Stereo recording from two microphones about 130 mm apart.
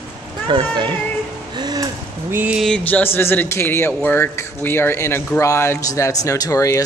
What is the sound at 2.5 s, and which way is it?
Speech, 5° left (ahead or behind).